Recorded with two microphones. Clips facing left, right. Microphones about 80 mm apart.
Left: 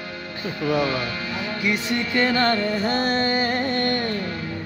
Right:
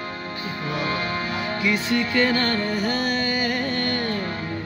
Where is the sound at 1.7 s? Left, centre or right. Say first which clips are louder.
Right 1 dB; left.